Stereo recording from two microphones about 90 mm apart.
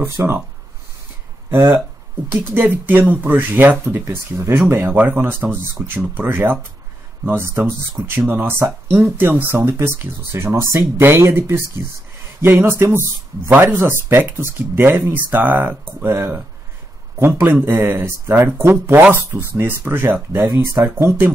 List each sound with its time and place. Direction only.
0.2 s speech: 30° right (ahead or behind)
1.5 s speech: 25° right (ahead or behind)